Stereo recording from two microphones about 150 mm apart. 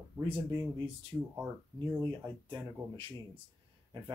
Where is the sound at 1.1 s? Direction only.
30° right (ahead or behind).